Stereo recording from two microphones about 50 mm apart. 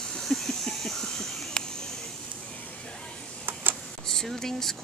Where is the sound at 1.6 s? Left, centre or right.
Centre.